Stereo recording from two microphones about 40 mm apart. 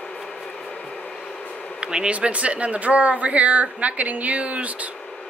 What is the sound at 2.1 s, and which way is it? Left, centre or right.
A woman's voice, right.